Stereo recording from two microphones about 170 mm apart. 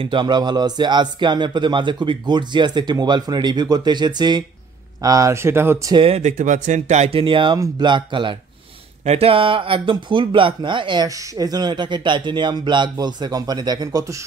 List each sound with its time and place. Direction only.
0.0 s speech: 30° right (ahead or behind)
6.0 s speech: 40° right (ahead or behind); by 14.2 s 20° right (ahead or behind)